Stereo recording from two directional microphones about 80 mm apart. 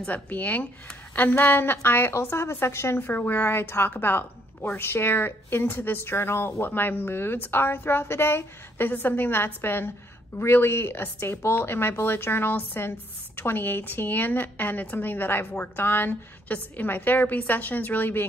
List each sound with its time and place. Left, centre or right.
0.0 s a woman's voice: left